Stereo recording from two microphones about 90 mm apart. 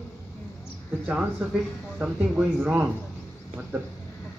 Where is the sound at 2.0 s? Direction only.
15° right (ahead or behind).